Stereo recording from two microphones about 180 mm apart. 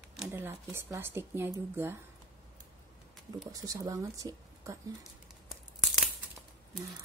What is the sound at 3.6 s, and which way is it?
Speech, 20° right (ahead or behind).